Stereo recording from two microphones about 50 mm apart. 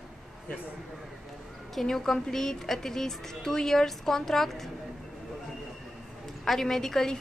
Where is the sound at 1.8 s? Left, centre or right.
Centre.